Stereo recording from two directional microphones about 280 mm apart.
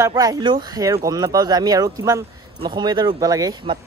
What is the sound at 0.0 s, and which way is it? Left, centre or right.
Speech, centre.